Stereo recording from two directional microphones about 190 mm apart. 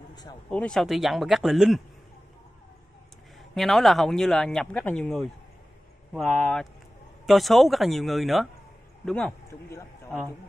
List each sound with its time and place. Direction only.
0.1 s a sound: 20° left (ahead or behind)
0.5 s speech: 5° left (ahead or behind)
3.5 s a man's voice: centre (ahead or behind)
9.5 s a man's voice: 15° left (ahead or behind)